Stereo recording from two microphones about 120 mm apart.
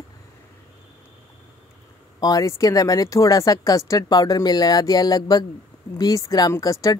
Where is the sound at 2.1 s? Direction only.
30° left (ahead or behind).